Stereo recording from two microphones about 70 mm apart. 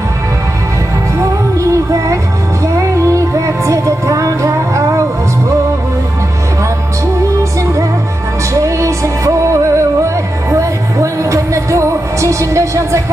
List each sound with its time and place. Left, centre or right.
1.6 s music: right
8.5 s music: right